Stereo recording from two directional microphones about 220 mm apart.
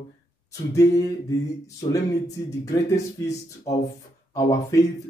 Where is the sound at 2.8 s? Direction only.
15° left (ahead or behind).